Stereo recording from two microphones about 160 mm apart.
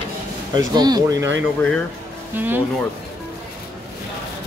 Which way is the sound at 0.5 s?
25° right (ahead or behind).